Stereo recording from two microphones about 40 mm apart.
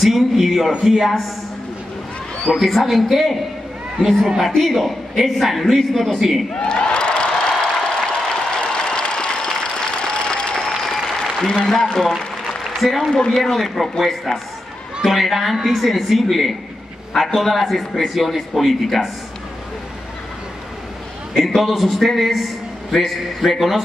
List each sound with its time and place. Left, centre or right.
0.0 s a man's voice: centre
2.5 s a man's voice: centre
6.5 s applause: left
11.6 s a man's voice: centre
13.1 s a man's voice: left
13.4 s a man's voice: centre
21.5 s a man's voice: centre